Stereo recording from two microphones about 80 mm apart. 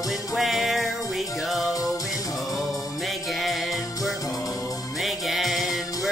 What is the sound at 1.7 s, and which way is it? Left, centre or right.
Music, left.